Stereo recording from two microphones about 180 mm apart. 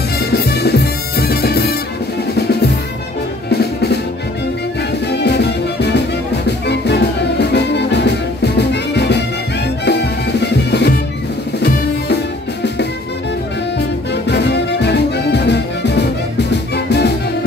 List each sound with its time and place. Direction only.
0.3 s music: 65° left (ahead or behind)
3.4 s music: 65° left (ahead or behind)
5.1 s music: 70° left (ahead or behind)
13.7 s music: 70° left (ahead or behind)